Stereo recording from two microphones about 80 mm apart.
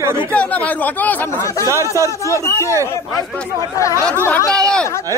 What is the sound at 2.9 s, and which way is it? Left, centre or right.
Speech, left.